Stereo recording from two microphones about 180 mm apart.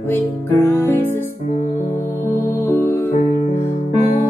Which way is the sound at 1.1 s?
45° left (ahead or behind).